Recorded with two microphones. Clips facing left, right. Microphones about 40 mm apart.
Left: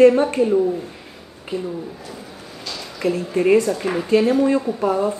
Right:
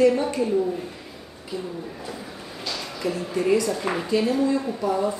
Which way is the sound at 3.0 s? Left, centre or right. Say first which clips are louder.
Left 6 dB; left.